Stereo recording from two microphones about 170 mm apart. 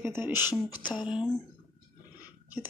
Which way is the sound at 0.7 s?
25° left (ahead or behind).